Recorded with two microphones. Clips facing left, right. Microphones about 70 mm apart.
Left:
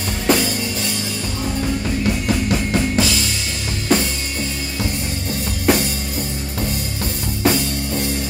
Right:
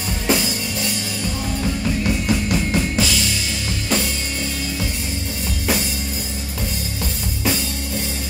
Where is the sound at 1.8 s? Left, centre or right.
Centre.